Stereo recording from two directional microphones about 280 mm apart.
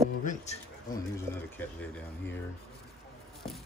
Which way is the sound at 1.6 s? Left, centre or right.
Centre.